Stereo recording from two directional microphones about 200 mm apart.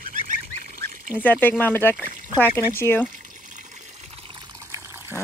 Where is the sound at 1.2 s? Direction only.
10° left (ahead or behind).